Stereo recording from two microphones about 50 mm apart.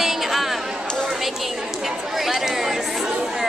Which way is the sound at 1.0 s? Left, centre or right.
Centre.